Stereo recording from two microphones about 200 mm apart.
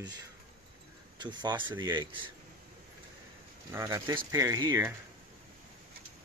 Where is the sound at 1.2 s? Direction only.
20° right (ahead or behind).